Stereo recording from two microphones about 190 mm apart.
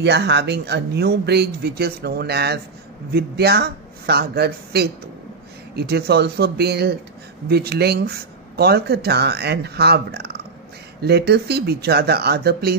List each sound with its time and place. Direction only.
0.0 s speech: 65° right (ahead or behind)